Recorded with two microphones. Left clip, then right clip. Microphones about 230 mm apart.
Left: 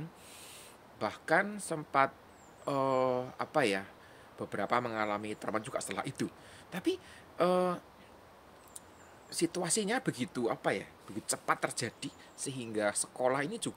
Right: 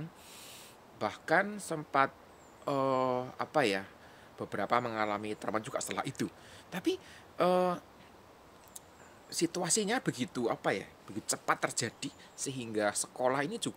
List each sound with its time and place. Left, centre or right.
0.9 s speech: centre
9.3 s speech: centre